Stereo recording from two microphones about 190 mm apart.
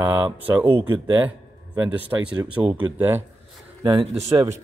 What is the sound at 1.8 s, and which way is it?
Speech, 10° right (ahead or behind).